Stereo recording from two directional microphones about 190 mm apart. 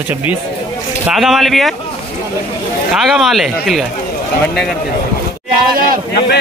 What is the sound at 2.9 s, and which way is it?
Speech, centre (ahead or behind).